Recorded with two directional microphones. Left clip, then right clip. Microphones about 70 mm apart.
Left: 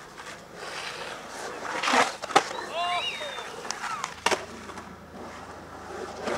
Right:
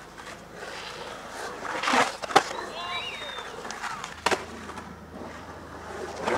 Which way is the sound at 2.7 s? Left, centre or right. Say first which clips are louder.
Left 5 dB; left.